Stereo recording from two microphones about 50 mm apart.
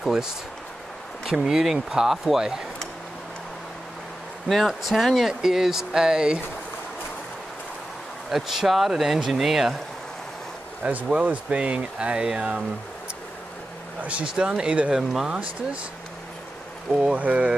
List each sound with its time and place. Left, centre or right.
0.0 s speech: centre
4.5 s speech: centre
8.3 s speech: centre
10.8 s speech: right
14.0 s speech: right
17.0 s speech: right